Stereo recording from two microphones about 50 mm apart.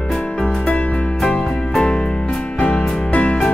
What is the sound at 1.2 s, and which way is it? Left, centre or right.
Music, centre.